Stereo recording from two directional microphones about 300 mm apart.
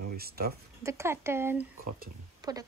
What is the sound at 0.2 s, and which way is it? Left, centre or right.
Speech, right.